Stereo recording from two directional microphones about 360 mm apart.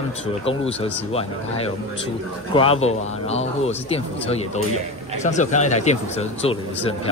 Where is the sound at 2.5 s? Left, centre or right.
Centre.